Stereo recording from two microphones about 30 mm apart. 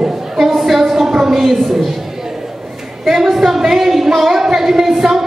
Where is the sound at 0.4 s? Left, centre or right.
Centre.